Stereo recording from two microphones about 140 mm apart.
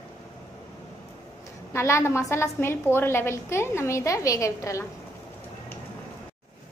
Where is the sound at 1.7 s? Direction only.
20° left (ahead or behind).